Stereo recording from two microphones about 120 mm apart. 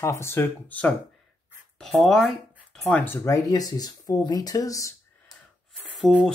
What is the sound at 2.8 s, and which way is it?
Speech, 15° left (ahead or behind).